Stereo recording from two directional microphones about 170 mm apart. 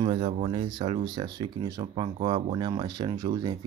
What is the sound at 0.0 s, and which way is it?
Speech, 35° right (ahead or behind).